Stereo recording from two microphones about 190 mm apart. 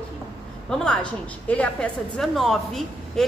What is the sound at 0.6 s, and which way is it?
A woman's voice, 5° left (ahead or behind).